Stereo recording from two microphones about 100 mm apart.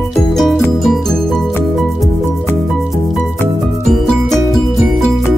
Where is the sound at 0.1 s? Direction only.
5° left (ahead or behind).